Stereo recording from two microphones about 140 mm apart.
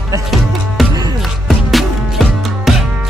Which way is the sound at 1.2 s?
Centre (ahead or behind).